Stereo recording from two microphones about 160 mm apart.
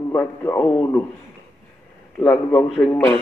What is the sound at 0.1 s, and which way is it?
Speech, 15° left (ahead or behind).